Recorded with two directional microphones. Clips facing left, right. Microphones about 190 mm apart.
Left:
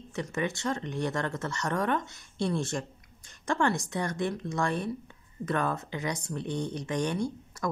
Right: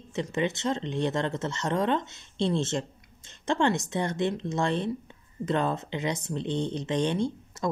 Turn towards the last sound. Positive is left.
turn(degrees=-25)  # may be behind; listen again after turning